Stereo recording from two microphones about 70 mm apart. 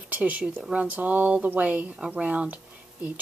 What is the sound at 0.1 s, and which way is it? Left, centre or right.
Speech, right.